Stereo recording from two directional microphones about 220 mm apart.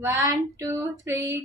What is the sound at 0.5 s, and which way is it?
Female singing, 10° right (ahead or behind).